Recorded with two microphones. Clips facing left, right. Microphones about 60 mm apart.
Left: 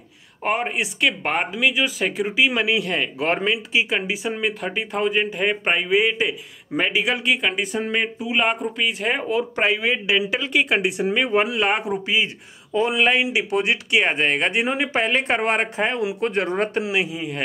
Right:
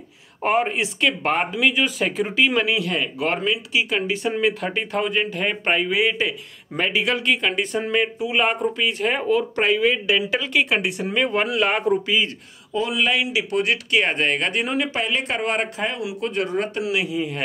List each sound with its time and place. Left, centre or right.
0.4 s speech: centre
3.2 s speech: left
3.9 s speech: centre
12.7 s speech: left; by 17.4 s centre